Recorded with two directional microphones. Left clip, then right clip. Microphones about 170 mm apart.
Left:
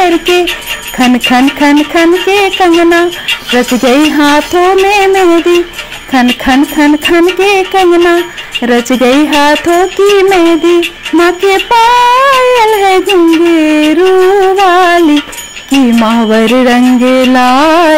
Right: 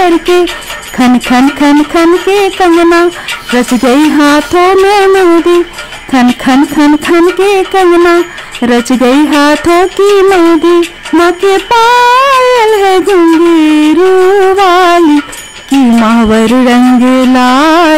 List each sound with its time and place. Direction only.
0.0 s speech: 15° right (ahead or behind)
8.9 s a sound: 20° right (ahead or behind)
15.7 s speech: 20° right (ahead or behind)